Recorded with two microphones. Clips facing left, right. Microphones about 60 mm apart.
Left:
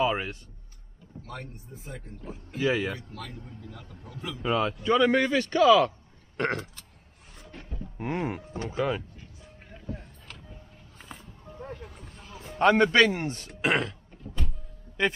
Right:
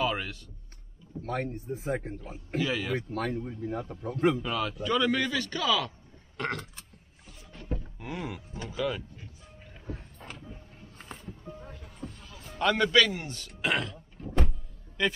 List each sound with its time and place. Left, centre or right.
0.0 s a man's voice: left
1.2 s speech: right
2.6 s speech: left
2.9 s speech: right
3.6 s a man's voice: right
4.4 s a man's voice: left
8.0 s speech: left
8.6 s speech: left
11.1 s music: centre
11.6 s music: left
12.3 s speech: left
14.2 s power windows: right